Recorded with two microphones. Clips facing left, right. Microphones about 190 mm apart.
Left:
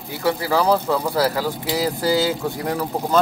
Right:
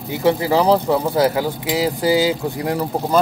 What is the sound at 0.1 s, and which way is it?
Speech, 20° right (ahead or behind).